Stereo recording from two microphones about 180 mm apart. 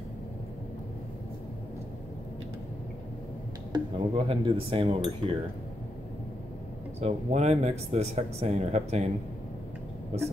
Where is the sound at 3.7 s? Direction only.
30° right (ahead or behind).